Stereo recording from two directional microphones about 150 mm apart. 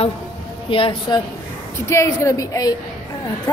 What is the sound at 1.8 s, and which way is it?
Speech, 20° left (ahead or behind).